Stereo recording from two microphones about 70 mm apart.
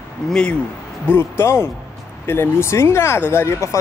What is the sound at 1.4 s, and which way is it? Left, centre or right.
Speech, left.